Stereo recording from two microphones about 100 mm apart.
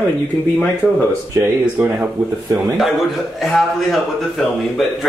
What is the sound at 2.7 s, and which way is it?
Speech, centre (ahead or behind).